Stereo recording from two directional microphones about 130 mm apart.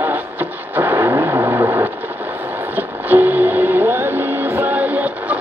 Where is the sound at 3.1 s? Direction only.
15° right (ahead or behind).